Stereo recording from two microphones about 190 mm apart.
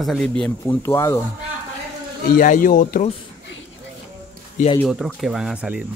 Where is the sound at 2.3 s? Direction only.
45° left (ahead or behind).